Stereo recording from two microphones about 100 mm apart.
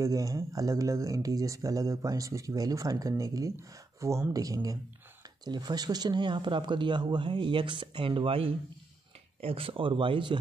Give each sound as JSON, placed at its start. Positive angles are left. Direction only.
{"t": 0.0, "sound": "speech", "side_deg": -35}